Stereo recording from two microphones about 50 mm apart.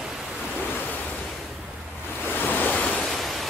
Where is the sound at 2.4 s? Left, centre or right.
Left.